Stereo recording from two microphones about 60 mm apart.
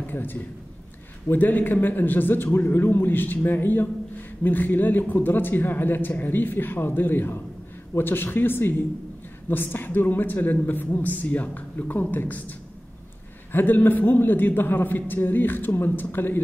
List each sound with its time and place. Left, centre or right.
0.0 s a man's voice: left